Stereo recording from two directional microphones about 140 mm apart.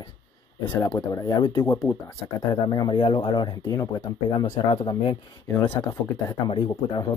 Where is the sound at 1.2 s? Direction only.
30° left (ahead or behind).